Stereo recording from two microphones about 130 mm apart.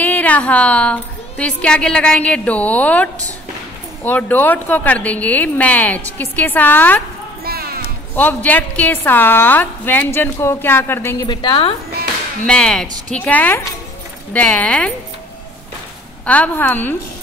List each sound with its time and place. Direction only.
0.0 s a woman's voice: 10° left (ahead or behind)
8.1 s a woman's voice: 15° left (ahead or behind)
11.2 s a woman's voice: 40° left (ahead or behind)
12.4 s a woman's voice: 5° left (ahead or behind)
16.3 s a woman's voice: 15° left (ahead or behind)